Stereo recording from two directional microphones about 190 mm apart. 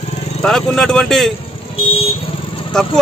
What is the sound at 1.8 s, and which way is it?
Vehicle, 30° left (ahead or behind).